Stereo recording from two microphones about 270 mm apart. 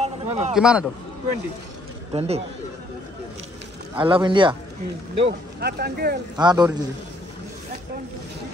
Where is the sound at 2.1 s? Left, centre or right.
Right.